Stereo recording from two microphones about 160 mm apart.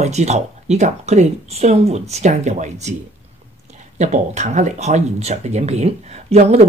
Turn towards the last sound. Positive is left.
turn(degrees=-40)  # may be behind; listen again after turning